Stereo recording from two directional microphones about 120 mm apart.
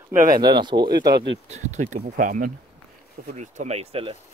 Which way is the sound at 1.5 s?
85° right.